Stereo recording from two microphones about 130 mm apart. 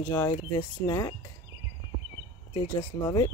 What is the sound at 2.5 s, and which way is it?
Speech, 35° left (ahead or behind).